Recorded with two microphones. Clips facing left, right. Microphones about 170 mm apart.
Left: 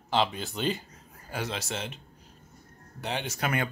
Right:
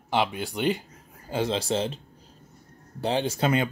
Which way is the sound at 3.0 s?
30° right (ahead or behind).